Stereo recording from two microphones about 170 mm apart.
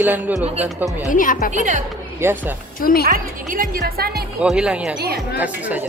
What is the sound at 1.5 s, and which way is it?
Speech, 45° right (ahead or behind).